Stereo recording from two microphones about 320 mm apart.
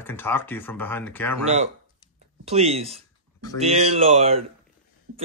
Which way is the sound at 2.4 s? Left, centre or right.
Centre.